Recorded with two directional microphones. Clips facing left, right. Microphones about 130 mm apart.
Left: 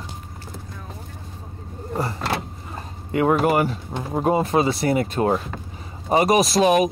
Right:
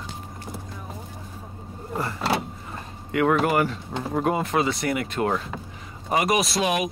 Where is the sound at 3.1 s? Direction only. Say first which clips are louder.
Left 2 dB; 25° left (ahead or behind).